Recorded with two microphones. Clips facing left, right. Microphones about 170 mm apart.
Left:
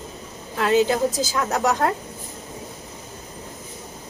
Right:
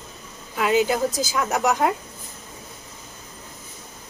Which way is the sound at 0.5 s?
5° right (ahead or behind).